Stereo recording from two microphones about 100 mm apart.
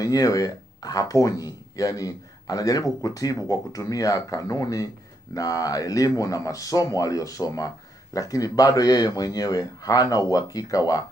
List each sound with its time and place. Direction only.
0.0 s speech: 35° left (ahead or behind)